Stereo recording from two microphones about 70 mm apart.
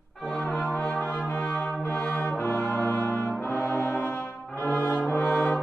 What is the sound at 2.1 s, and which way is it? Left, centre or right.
Brass instrument, left.